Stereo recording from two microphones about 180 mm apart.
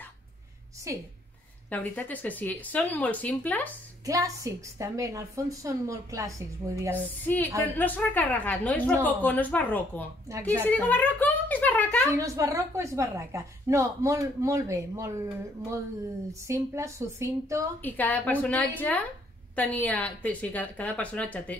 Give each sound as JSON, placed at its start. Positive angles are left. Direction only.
{"t": 0.9, "sound": "a woman's voice", "side_deg": -20}
{"t": 1.7, "sound": "speech", "side_deg": 10}
{"t": 4.0, "sound": "a woman's voice", "side_deg": -20}
{"t": 7.6, "sound": "speech", "side_deg": 10}
{"t": 10.3, "sound": "a woman's voice", "side_deg": -20}
{"t": 10.7, "sound": "speech", "side_deg": 10}
{"t": 12.1, "sound": "a woman's voice", "side_deg": -15}
{"t": 16.3, "sound": "a woman's voice", "side_deg": -15}
{"t": 17.8, "sound": "speech", "side_deg": 10}